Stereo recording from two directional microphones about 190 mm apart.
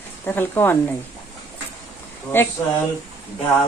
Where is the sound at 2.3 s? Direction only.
10° left (ahead or behind).